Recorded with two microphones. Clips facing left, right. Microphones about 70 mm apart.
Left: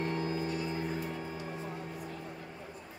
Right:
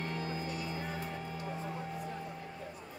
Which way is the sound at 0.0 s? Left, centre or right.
Left.